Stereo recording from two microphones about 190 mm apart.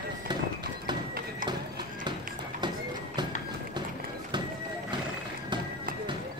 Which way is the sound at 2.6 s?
25° right (ahead or behind).